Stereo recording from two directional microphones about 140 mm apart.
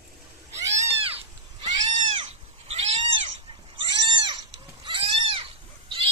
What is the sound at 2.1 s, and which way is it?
Cat, 45° right (ahead or behind).